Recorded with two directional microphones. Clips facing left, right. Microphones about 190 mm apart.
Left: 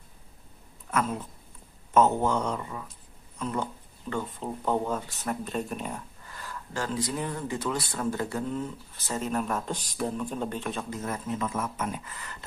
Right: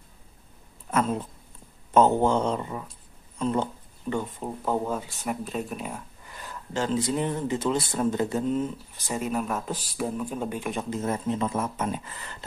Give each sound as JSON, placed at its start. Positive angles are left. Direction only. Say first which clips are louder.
{"t": 0.8, "sound": "a sound", "louder": "right 3 dB", "side_deg": -25}
{"t": 2.0, "sound": "speech", "louder": "right 3 dB", "side_deg": -30}
{"t": 4.1, "sound": "speech", "louder": "right 3 dB", "side_deg": -10}
{"t": 6.3, "sound": "speech", "louder": "right 4 dB", "side_deg": -20}
{"t": 10.8, "sound": "speech", "louder": "right 5 dB", "side_deg": -25}